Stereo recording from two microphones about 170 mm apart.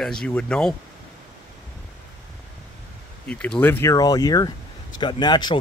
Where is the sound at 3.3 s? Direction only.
5° left (ahead or behind); by 5.5 s 25° left (ahead or behind).